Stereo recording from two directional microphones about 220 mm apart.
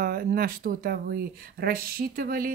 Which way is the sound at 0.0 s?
45° right (ahead or behind).